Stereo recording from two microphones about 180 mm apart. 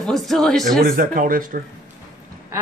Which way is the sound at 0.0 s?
Centre (ahead or behind).